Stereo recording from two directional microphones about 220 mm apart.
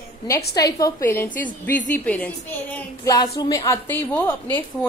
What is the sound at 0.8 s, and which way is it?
A woman's voice, 15° left (ahead or behind).